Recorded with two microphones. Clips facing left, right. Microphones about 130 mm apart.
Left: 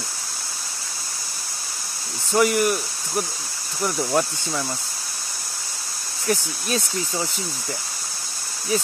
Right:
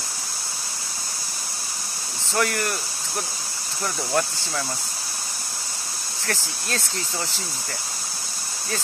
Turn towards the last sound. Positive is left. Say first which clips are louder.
# left 4 dB
turn(degrees=15)  # may be behind; listen again after turning